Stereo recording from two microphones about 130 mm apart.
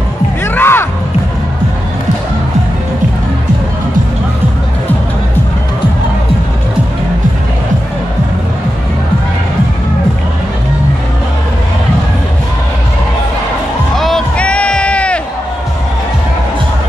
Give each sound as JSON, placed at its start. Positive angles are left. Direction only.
{"t": 0.4, "sound": "music", "side_deg": 15}
{"t": 13.9, "sound": "music", "side_deg": 5}